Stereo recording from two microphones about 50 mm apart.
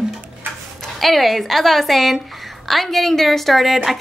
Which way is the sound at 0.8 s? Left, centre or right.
Centre.